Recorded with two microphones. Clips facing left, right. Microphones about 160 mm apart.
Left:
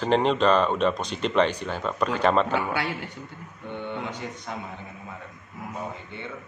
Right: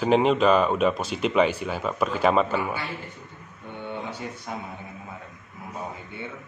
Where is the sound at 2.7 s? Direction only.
75° left (ahead or behind).